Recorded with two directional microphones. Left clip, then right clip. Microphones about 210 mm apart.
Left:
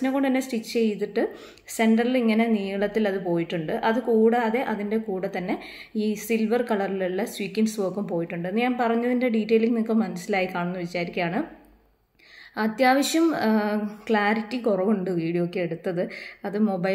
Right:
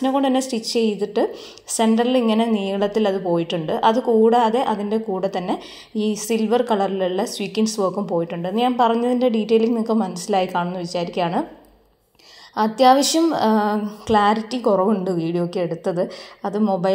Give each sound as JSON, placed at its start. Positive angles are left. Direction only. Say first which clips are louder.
{"t": 0.0, "sound": "a woman's voice", "louder": "right 5 dB", "side_deg": -5}
{"t": 7.3, "sound": "a woman's voice", "louder": "right 4 dB", "side_deg": -60}
{"t": 7.7, "sound": "a woman's voice", "louder": "right 6 dB", "side_deg": -5}
{"t": 12.5, "sound": "a woman's voice", "louder": "right 7 dB", "side_deg": -5}
{"t": 16.5, "sound": "a woman's voice", "louder": "right 5 dB", "side_deg": -5}